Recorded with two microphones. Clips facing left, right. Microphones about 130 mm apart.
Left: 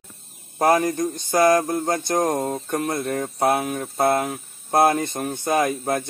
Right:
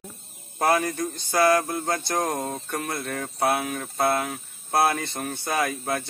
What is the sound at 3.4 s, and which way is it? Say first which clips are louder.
Speech: left 3 dB; 40° left (ahead or behind).